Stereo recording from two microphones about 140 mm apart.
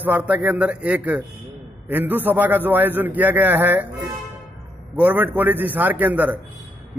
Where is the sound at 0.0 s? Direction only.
10° right (ahead or behind).